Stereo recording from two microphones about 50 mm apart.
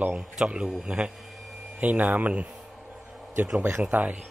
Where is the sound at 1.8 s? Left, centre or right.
Right.